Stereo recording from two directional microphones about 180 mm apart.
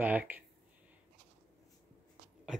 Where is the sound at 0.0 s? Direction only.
10° right (ahead or behind).